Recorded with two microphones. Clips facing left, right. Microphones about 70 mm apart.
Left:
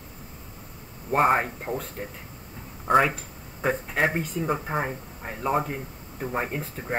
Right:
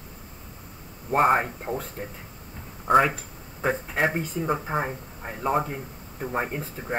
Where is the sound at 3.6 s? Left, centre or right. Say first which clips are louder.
Even; centre.